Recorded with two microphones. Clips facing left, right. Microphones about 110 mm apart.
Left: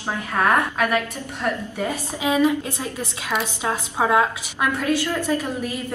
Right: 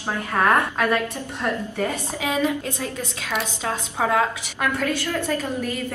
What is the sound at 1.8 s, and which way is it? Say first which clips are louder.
Speech: left 2 dB; 15° left (ahead or behind).